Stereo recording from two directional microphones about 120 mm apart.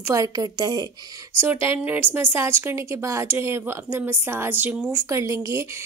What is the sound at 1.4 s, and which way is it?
A woman's voice, 20° right (ahead or behind).